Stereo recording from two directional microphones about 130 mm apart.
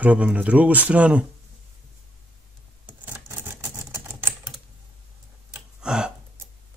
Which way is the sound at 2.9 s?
15° right (ahead or behind).